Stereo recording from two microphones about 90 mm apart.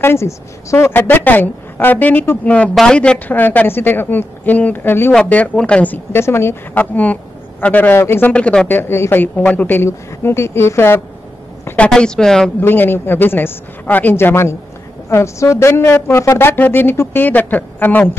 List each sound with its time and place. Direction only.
0.0 s a woman's voice: 30° left (ahead or behind); by 5.9 s 15° left (ahead or behind)
6.1 s a woman's voice: 30° left (ahead or behind)
7.9 s a woman's voice: 30° left (ahead or behind)
8.3 s a woman's voice: 15° left (ahead or behind)
11.6 s a woman's voice: 15° left (ahead or behind)
12.5 s a woman's voice: 20° left (ahead or behind)